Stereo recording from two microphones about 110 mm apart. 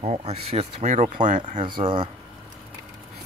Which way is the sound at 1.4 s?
50° right (ahead or behind).